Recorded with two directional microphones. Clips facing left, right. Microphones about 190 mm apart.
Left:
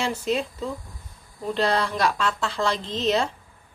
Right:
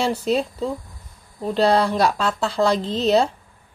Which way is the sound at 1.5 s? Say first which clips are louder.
Right 6 dB; 35° right (ahead or behind).